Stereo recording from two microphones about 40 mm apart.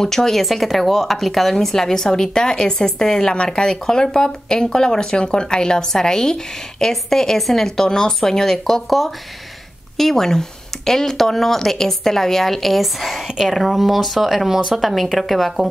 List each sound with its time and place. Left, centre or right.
0.0 s a woman's voice: centre